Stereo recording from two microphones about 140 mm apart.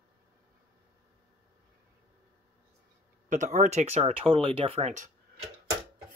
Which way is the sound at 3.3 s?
60° right (ahead or behind).